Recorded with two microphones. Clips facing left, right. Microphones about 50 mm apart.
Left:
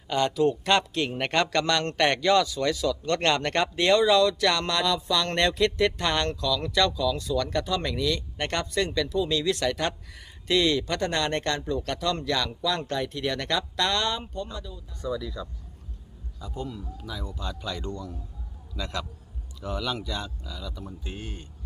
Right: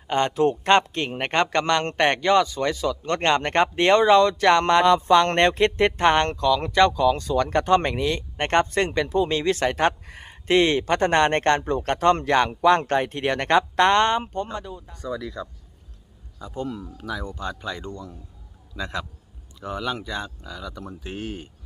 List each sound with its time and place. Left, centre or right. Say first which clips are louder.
0.1 s speech: right 3 dB; right
17.4 s speech: right 5 dB; right
17.6 s speech: right 1 dB; right
20.4 s speech: right 4 dB; right
20.8 s speech: right 5 dB; right